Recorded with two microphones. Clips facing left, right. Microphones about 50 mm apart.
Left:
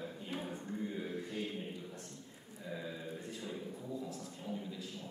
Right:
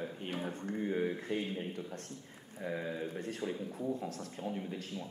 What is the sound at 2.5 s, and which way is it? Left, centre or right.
Speech, right.